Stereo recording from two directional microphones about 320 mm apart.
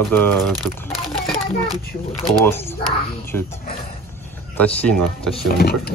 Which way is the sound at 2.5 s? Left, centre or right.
Centre.